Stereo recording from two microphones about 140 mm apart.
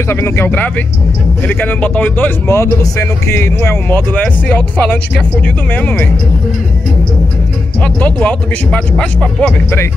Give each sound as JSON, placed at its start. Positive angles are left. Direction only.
{"t": 0.1, "sound": "speech", "side_deg": 15}
{"t": 7.8, "sound": "speech", "side_deg": 10}